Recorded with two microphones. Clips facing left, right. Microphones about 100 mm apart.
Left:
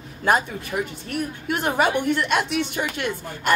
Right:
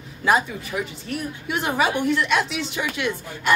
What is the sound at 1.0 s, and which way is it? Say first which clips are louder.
Speech: left 2 dB; 45° left (ahead or behind).